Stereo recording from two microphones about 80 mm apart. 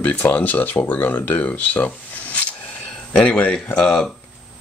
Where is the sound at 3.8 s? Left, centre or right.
Centre.